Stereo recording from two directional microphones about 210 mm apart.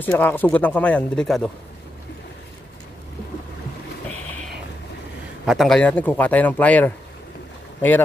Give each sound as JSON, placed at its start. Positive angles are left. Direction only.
{"t": 0.0, "sound": "a man's voice", "side_deg": 10}
{"t": 5.4, "sound": "a man's voice", "side_deg": 0}